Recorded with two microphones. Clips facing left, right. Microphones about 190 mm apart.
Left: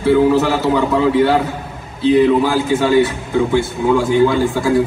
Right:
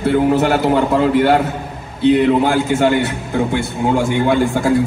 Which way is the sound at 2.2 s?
55° right (ahead or behind).